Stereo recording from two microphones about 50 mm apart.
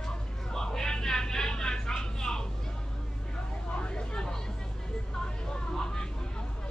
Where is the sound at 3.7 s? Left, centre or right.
Left.